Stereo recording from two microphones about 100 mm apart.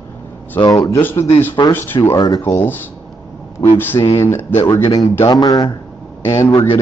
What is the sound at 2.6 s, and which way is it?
Speech, 20° left (ahead or behind).